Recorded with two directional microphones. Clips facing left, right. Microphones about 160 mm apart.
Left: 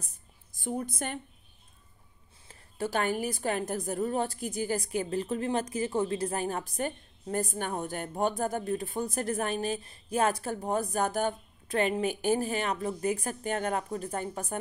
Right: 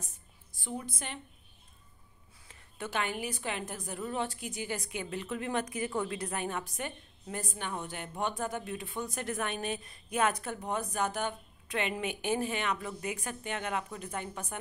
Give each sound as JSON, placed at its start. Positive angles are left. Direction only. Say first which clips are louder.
{"t": 0.6, "sound": "a woman's voice", "louder": "left 6 dB", "side_deg": 45}
{"t": 2.4, "sound": "a woman's voice", "louder": "left 7 dB", "side_deg": 35}